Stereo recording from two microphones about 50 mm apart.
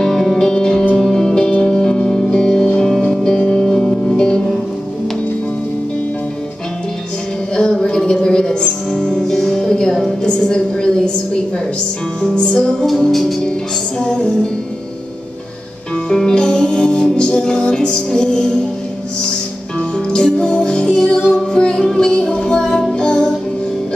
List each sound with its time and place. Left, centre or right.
0.0 s music: centre; by 2.8 s left
2.8 s music: centre
7.5 s music: centre
12.2 s music: centre
12.8 s music: centre
13.9 s music: centre
16.2 s music: centre
20.1 s music: centre